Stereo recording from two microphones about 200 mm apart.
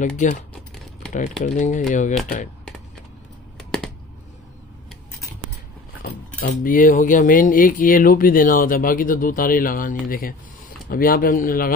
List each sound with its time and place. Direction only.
0.0 s speech: 40° left (ahead or behind)
1.4 s speech: 40° left (ahead or behind)
3.5 s computer keyboard: centre (ahead or behind)
6.4 s speech: 40° left (ahead or behind)